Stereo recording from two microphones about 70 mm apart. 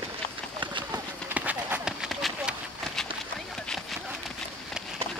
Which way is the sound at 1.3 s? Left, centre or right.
Right.